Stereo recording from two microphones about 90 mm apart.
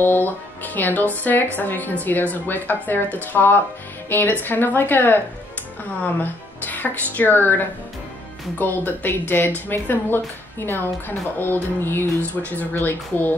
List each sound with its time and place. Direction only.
0.0 s a woman's voice: 20° left (ahead or behind)